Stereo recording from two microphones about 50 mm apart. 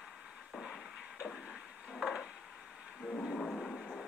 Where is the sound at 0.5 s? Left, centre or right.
Centre.